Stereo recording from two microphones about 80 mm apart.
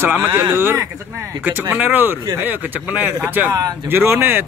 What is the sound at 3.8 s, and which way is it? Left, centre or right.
Speech, right.